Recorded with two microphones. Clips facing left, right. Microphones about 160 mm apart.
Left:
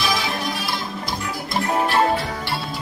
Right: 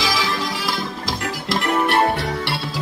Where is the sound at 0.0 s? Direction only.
90° right.